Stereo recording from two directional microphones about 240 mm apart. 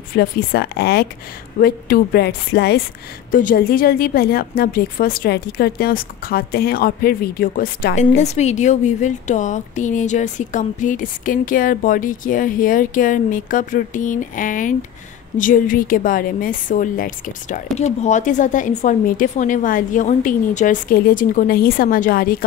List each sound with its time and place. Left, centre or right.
0.1 s a woman's voice: left